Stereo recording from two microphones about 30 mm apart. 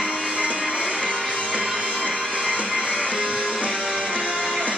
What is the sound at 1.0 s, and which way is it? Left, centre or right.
Music, right.